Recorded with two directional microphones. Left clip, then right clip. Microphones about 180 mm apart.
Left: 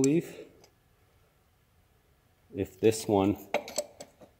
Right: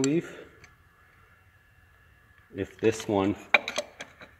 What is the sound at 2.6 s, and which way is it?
Speech, 40° left (ahead or behind).